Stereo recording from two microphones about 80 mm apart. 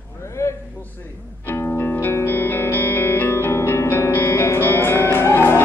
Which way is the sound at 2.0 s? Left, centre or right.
Left.